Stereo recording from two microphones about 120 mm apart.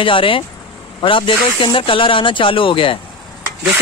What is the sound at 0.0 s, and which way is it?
Speech, 45° left (ahead or behind).